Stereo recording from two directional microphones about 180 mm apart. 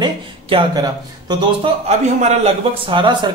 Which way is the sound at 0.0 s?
25° right (ahead or behind).